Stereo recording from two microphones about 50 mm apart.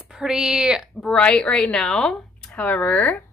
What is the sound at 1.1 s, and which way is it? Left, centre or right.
Speech, left.